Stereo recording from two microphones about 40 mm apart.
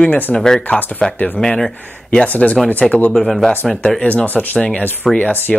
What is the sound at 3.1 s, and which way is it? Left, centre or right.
Speech, centre.